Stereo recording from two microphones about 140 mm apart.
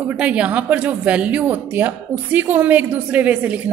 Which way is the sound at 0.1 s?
10° right (ahead or behind).